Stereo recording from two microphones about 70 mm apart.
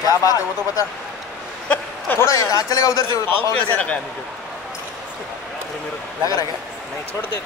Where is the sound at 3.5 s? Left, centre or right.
Left.